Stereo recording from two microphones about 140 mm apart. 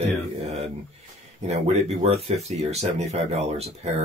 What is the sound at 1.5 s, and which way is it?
Speech, 50° right (ahead or behind).